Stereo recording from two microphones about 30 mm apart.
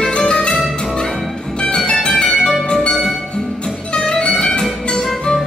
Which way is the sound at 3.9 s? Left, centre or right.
Left.